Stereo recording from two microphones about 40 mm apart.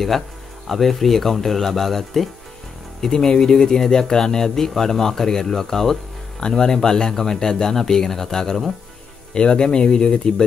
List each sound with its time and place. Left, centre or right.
0.7 s speech: centre; by 10.3 s left